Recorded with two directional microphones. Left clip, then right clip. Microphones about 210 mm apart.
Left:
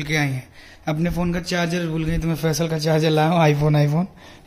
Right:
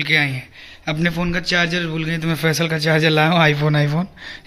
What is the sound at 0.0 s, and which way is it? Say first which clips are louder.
Speech: right 6 dB; 10° left (ahead or behind).